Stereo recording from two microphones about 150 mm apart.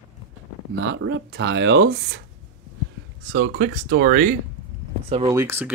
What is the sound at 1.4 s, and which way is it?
Speech, 90° right.